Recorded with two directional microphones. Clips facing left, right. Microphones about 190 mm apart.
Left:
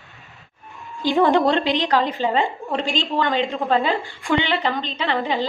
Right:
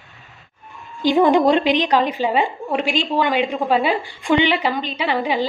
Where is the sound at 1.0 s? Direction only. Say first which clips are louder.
Right 3 dB; 15° right (ahead or behind).